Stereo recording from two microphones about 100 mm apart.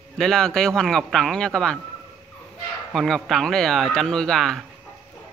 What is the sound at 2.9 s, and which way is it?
Speech, centre (ahead or behind).